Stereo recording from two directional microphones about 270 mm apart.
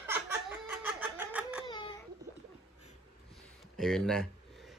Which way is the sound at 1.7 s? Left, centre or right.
Centre.